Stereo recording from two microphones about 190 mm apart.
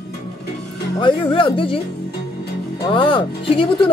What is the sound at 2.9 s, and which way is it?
Speech, 25° left (ahead or behind).